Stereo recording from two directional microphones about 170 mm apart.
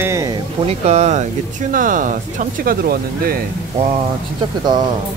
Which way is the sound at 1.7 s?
50° right (ahead or behind).